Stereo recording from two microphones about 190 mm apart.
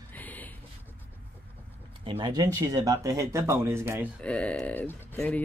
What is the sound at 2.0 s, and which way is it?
Speech, 25° right (ahead or behind).